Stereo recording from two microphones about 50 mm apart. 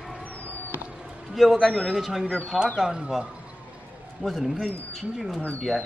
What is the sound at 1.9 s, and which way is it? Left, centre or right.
Speech, centre.